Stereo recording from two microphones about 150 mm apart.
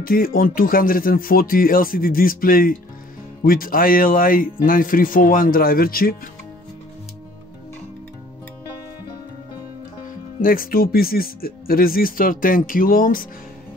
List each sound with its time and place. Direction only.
0.0 s speech: 75° left (ahead or behind)
10.4 s speech: 75° left (ahead or behind)